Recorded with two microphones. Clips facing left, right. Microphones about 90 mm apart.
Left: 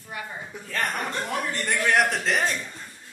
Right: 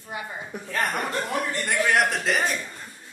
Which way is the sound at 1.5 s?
Centre (ahead or behind).